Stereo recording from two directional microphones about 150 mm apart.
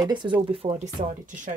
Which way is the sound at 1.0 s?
55° right (ahead or behind).